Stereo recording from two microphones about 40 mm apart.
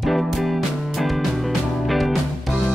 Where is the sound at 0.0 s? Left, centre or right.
Centre.